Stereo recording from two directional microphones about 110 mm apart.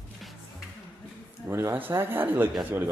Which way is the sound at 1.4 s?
20° right (ahead or behind).